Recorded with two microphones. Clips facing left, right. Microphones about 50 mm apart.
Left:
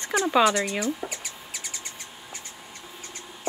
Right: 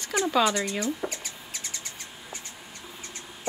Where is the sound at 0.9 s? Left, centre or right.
Centre.